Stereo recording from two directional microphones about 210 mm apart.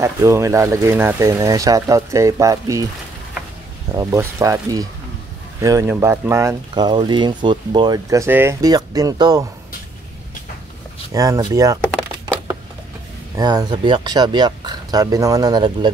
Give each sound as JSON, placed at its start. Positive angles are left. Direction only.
{"t": 0.0, "sound": "speech", "side_deg": -15}
{"t": 3.9, "sound": "speech", "side_deg": -15}
{"t": 11.1, "sound": "speech", "side_deg": -15}
{"t": 13.4, "sound": "speech", "side_deg": -20}